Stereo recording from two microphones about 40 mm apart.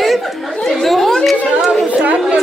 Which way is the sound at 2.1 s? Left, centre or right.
Centre.